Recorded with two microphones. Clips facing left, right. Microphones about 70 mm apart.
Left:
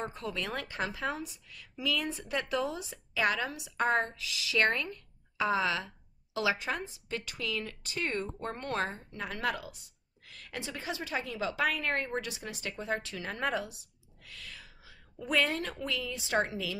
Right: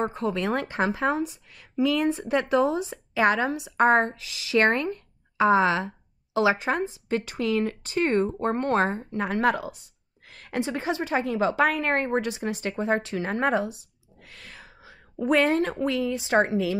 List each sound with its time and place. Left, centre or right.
0.0 s a woman's voice: right